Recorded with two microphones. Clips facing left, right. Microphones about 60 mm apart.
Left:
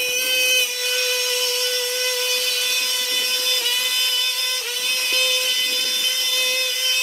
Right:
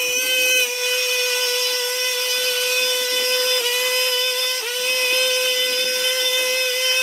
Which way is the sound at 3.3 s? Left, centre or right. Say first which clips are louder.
Right 4 dB; right.